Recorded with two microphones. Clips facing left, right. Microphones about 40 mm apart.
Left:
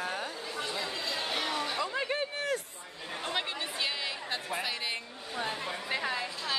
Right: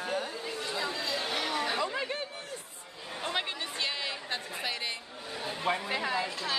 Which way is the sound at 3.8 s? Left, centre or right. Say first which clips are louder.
Right 1 dB; centre.